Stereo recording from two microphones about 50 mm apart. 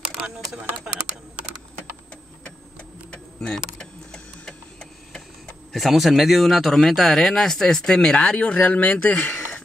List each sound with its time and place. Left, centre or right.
3.4 s speech: centre
3.8 s printer: centre
5.7 s speech: centre
8.2 s speech: left
8.5 s speech: left